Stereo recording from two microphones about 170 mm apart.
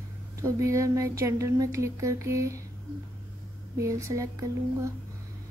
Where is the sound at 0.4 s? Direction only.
20° right (ahead or behind).